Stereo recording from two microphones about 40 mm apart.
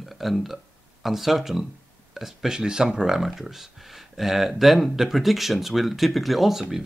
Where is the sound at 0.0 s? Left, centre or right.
Centre.